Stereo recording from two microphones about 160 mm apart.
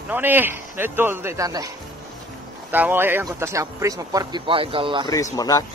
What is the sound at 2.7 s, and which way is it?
Speech, 10° right (ahead or behind).